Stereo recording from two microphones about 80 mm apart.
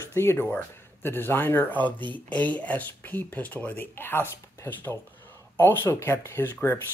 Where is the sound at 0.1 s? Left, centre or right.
Left.